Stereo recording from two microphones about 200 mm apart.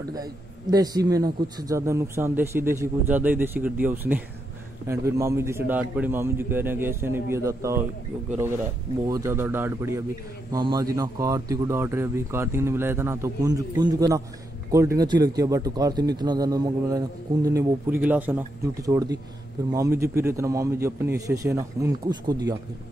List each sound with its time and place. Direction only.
0.1 s speech: 20° right (ahead or behind)
9.0 s speech: 15° right (ahead or behind)